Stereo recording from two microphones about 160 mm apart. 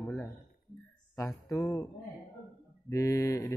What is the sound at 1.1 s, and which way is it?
Music, 20° left (ahead or behind).